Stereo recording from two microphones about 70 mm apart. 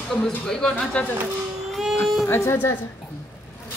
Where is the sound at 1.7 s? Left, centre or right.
Centre.